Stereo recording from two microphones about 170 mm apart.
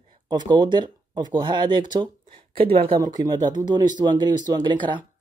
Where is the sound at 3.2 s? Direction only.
25° right (ahead or behind).